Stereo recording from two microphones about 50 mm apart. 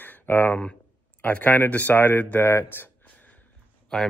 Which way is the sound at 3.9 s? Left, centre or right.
Centre.